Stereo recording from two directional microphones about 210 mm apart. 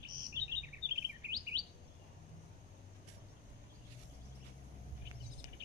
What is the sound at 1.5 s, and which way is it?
Chirp, 15° right (ahead or behind).